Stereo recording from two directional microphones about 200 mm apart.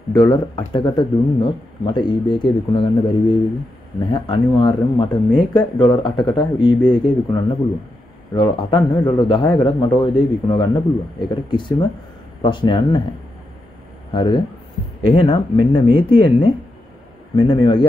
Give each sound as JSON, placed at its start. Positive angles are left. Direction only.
{"t": 0.1, "sound": "a man's voice", "side_deg": 20}
{"t": 14.1, "sound": "a man's voice", "side_deg": 25}